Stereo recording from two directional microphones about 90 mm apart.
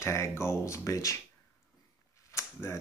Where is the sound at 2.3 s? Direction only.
30° left (ahead or behind).